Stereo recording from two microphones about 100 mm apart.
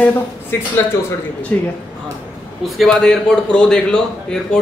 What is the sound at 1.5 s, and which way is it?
Speech, 15° left (ahead or behind).